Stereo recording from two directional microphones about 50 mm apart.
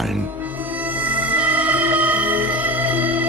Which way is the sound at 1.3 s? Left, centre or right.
Right.